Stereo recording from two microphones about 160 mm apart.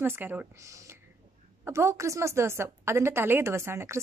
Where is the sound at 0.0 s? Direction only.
15° right (ahead or behind).